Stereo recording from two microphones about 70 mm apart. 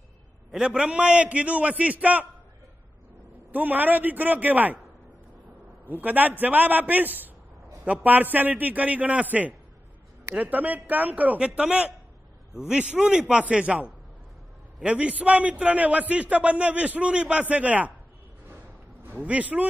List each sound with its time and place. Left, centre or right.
0.5 s a man's voice: centre
3.5 s a man's voice: right
5.9 s a man's voice: right
19.0 s a man's voice: right